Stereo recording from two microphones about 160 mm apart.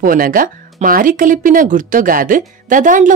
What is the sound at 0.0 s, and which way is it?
A woman's voice, 60° right (ahead or behind).